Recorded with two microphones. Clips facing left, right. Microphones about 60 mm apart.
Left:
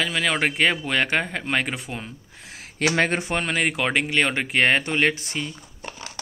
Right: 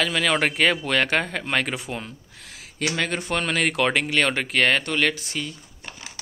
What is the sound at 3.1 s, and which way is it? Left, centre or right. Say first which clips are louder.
Speech: left 1 dB; left.